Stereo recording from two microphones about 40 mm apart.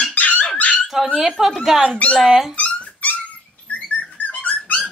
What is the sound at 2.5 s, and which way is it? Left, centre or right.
Dog, left.